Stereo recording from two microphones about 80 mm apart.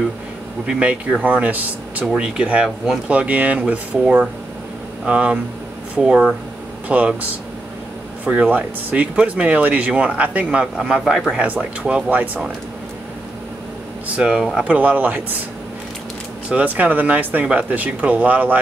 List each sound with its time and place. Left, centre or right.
0.7 s speech: centre
8.3 s speech: centre
11.3 s speech: centre
14.2 s speech: centre
14.6 s speech: centre
16.4 s speech: centre